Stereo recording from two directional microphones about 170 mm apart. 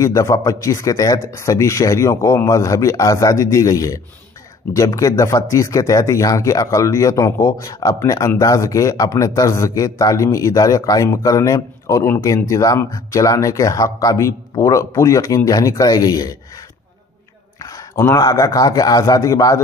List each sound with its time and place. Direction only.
0.0 s speech: 20° left (ahead or behind)
17.6 s a man's voice: 20° left (ahead or behind)